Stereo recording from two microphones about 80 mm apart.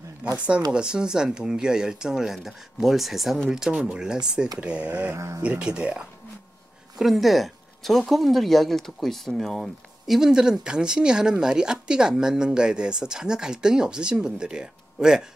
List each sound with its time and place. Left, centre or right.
0.2 s speech: centre
5.1 s speech: right
5.4 s speech: centre
7.0 s speech: centre